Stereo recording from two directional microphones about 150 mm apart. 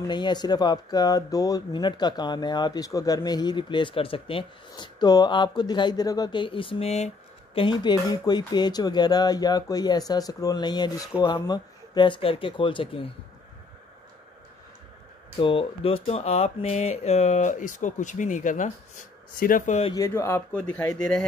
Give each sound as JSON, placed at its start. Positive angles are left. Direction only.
{"t": 0.1, "sound": "speech", "side_deg": 30}
{"t": 7.5, "sound": "speech", "side_deg": 30}
{"t": 15.3, "sound": "speech", "side_deg": 35}
{"t": 19.9, "sound": "speech", "side_deg": 20}